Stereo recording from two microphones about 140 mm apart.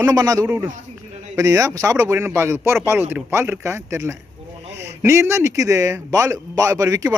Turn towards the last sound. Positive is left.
turn(degrees=-20)  # may be behind; listen again after turning